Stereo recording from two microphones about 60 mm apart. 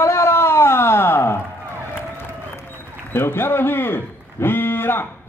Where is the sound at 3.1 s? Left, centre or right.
Left.